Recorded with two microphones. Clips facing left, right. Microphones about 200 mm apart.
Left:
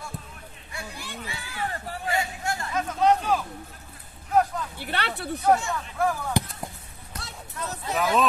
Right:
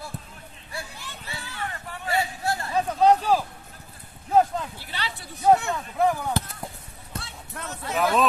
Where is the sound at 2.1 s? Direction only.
35° right (ahead or behind).